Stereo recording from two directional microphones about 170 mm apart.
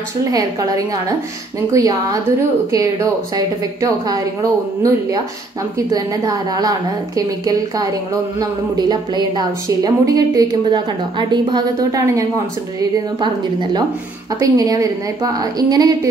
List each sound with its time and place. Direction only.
0.3 s a woman's voice: 20° right (ahead or behind)
3.3 s a woman's voice: 20° right (ahead or behind)
5.9 s a woman's voice: 20° right (ahead or behind)